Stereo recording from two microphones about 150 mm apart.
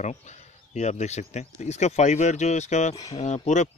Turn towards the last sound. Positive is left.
turn(degrees=50)  # may be behind; listen again after turning